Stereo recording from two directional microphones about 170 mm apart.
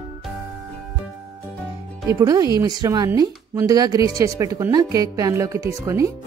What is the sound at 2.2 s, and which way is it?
A woman's voice, 20° right (ahead or behind).